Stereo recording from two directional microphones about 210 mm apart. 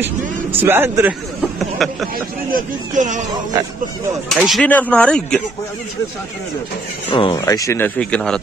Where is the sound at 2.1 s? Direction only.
40° right (ahead or behind).